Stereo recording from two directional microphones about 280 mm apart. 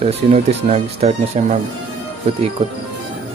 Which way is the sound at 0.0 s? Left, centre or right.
Right.